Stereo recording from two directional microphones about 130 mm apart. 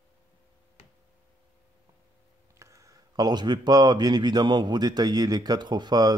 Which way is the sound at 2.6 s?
25° right (ahead or behind).